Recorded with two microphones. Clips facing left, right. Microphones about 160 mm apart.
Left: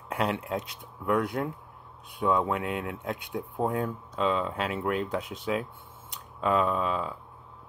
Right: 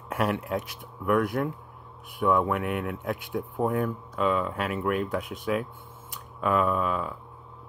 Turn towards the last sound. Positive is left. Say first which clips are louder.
# right 1 dB
turn(degrees=25)  # may be behind; listen again after turning